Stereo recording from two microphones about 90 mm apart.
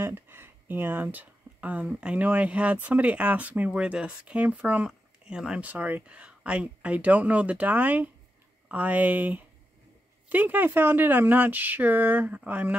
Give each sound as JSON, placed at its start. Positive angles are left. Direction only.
{"t": 0.0, "sound": "speech", "side_deg": -25}
{"t": 5.7, "sound": "speech", "side_deg": -20}